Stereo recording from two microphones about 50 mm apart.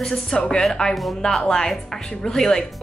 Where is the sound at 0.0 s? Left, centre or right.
Centre.